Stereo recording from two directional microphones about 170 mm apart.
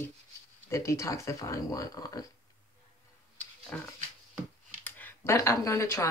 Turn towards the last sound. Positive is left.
turn(degrees=15)  # may be behind; listen again after turning